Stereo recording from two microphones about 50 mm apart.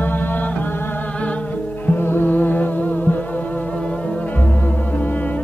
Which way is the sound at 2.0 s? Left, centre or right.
Left.